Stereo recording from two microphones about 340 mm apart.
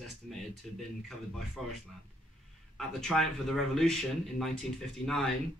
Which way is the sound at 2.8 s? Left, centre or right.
Centre.